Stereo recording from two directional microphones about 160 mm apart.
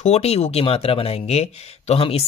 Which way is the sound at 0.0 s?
40° left (ahead or behind).